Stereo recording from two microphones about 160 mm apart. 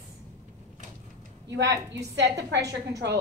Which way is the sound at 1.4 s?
90° right.